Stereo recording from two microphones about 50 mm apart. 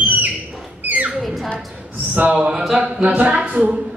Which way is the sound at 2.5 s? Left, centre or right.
Centre.